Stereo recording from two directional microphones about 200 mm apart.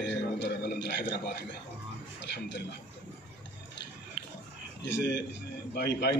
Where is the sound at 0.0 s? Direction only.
60° left (ahead or behind).